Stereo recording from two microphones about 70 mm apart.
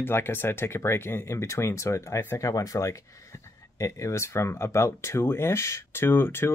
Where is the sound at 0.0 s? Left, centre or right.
Left.